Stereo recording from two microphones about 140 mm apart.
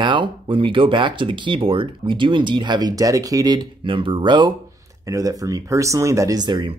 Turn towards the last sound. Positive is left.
turn(degrees=-35)  # may be behind; listen again after turning